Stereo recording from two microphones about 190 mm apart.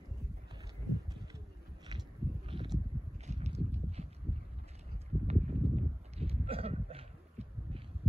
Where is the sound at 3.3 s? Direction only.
35° right (ahead or behind).